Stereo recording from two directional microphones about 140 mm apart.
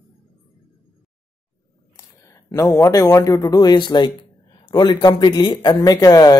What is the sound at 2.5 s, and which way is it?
Speech, 20° left (ahead or behind).